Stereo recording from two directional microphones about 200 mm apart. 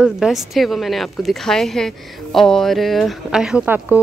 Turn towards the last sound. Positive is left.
turn(degrees=-10)  # may be behind; listen again after turning